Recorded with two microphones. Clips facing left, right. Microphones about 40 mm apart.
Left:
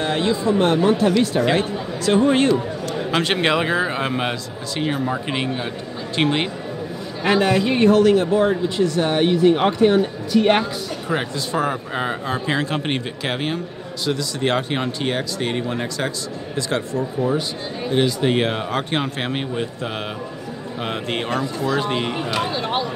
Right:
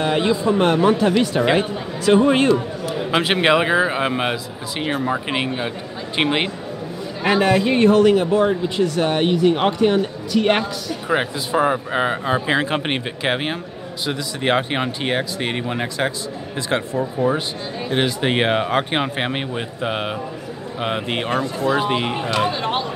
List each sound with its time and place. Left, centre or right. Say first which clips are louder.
0.0 s speech: right 2 dB; centre
11.1 s speech: right 3 dB; centre
17.9 s speech: left 1 dB; right